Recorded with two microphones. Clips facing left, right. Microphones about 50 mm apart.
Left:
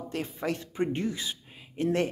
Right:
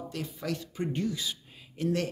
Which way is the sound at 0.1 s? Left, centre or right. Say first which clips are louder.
Left 5 dB; left.